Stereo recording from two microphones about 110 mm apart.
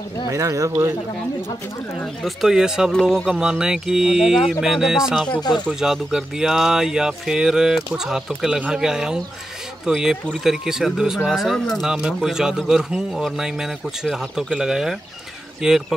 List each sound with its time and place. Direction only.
0.3 s speech: 30° right (ahead or behind)
2.2 s speech: 5° right (ahead or behind)
2.9 s speech: 5° left (ahead or behind)